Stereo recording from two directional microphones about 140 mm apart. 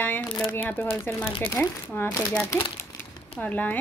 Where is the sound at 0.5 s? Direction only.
15° left (ahead or behind).